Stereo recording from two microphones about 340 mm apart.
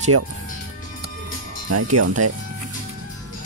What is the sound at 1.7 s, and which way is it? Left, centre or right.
Speech, right.